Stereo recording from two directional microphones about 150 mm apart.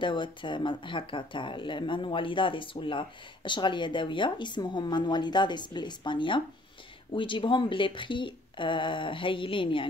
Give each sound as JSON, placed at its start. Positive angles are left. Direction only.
{"t": 0.0, "sound": "speech", "side_deg": 30}